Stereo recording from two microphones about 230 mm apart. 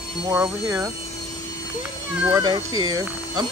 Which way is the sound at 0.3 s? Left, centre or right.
Centre.